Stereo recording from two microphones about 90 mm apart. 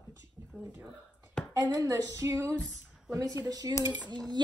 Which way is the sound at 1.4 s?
10° left (ahead or behind).